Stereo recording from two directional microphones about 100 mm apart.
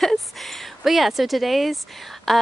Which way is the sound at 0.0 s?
Centre (ahead or behind).